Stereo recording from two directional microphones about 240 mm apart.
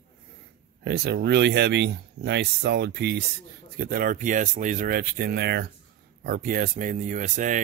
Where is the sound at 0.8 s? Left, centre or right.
Right.